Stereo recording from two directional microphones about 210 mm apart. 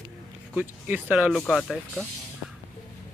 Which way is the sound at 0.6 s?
10° right (ahead or behind).